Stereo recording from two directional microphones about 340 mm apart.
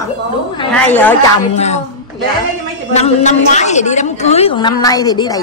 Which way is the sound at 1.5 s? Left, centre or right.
Centre.